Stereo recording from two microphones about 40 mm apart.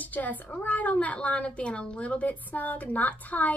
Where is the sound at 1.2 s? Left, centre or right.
Left.